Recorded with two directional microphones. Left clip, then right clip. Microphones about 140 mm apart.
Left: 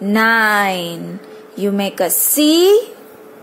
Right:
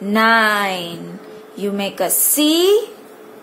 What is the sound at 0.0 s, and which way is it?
Speech, 35° left (ahead or behind).